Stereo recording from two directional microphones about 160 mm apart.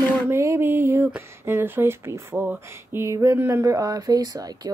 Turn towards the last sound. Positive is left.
turn(degrees=-25)  # may be behind; listen again after turning